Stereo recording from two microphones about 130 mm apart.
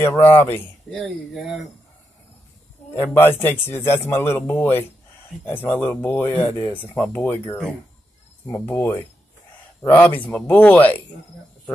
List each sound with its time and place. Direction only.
0.0 s speech: 15° left (ahead or behind)
0.9 s speech: centre (ahead or behind)
3.0 s speech: 15° left (ahead or behind)
8.5 s speech: 15° left (ahead or behind)